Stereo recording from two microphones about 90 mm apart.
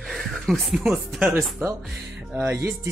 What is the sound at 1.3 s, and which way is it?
Speech, 20° right (ahead or behind).